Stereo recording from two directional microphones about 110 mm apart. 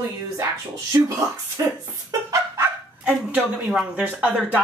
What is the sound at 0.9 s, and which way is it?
Speech, 30° right (ahead or behind).